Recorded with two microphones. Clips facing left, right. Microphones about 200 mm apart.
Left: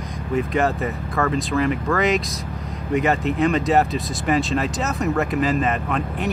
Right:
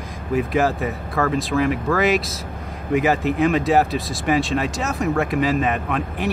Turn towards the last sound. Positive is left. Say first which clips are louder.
# even
turn(degrees=0)  # may be behind; listen again after turning